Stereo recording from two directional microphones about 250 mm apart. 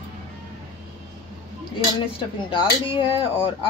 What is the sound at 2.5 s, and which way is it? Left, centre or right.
Speech, centre.